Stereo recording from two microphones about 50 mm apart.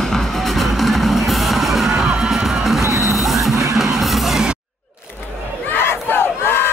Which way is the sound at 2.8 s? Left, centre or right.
Right.